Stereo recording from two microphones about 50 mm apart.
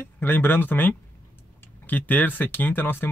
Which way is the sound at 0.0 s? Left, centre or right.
Left.